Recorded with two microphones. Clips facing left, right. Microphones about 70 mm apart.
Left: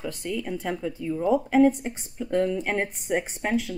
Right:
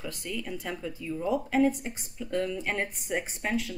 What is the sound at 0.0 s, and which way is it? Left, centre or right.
Speech, left.